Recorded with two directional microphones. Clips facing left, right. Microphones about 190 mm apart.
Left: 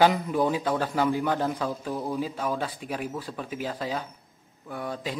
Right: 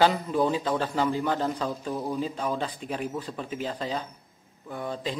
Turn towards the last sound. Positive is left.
turn(degrees=10)  # may be behind; listen again after turning